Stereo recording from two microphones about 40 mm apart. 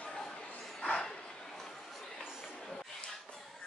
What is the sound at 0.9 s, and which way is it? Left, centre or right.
Bow-wow, centre.